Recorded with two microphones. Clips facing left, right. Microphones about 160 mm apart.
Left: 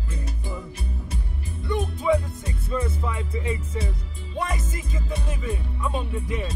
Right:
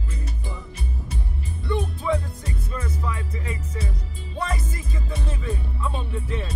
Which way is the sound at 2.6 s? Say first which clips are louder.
Left 5 dB; 25° left (ahead or behind).